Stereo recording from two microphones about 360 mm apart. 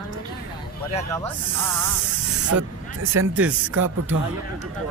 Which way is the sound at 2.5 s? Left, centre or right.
Right.